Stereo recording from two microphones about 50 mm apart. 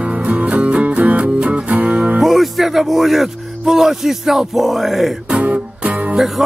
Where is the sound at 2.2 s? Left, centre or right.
Centre.